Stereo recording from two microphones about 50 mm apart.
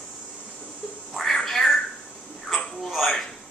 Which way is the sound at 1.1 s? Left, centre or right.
Centre.